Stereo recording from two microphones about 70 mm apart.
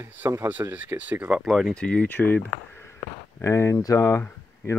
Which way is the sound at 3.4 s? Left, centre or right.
Left.